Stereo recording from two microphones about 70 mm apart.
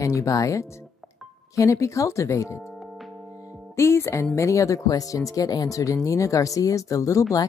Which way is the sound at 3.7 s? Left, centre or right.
Left.